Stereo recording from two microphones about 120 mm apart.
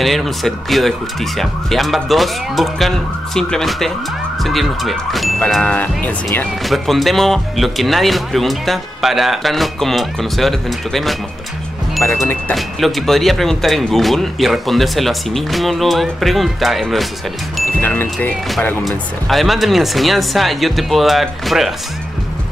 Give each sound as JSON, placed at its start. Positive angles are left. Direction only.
{"t": 0.0, "sound": "speech", "side_deg": 0}
{"t": 5.4, "sound": "music", "side_deg": 10}
{"t": 6.6, "sound": "speech", "side_deg": 0}
{"t": 12.0, "sound": "music", "side_deg": 15}
{"t": 12.5, "sound": "speech", "side_deg": 0}
{"t": 17.8, "sound": "music", "side_deg": 15}
{"t": 18.9, "sound": "speech", "side_deg": 0}